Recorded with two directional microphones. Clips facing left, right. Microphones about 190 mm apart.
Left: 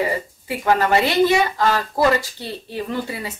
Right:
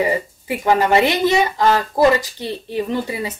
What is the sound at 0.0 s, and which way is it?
Speech, 15° right (ahead or behind).